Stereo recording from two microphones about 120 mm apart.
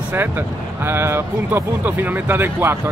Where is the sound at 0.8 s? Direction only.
20° right (ahead or behind).